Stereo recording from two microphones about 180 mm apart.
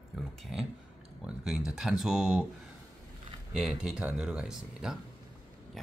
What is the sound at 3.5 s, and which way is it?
Speech, 5° right (ahead or behind).